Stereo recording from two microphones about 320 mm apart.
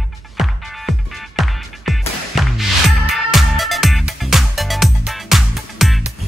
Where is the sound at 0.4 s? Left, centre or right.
Centre.